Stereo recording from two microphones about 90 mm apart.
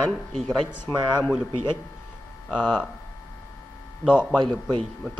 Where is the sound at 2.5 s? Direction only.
5° right (ahead or behind).